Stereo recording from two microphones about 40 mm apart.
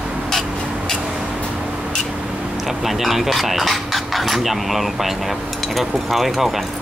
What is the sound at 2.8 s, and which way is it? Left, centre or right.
Cutlery, centre.